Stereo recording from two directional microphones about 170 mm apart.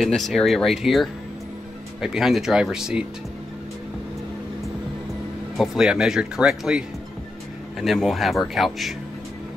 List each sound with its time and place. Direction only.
0.0 s speech: centre (ahead or behind)
5.6 s speech: 5° right (ahead or behind)
7.8 s speech: centre (ahead or behind)